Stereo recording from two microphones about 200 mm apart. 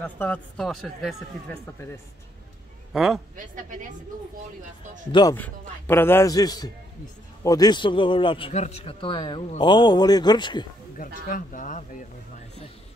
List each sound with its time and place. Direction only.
0.0 s speech: 10° left (ahead or behind)
2.9 s a man's voice: centre (ahead or behind)
3.3 s a woman's voice: 40° right (ahead or behind)
5.1 s a man's voice: 15° left (ahead or behind)
11.0 s speech: 45° left (ahead or behind)